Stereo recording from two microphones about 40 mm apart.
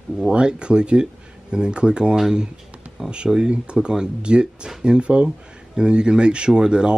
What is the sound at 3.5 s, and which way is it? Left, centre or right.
Speech, right.